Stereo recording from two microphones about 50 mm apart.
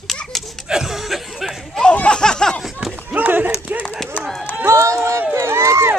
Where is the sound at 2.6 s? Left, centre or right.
Centre.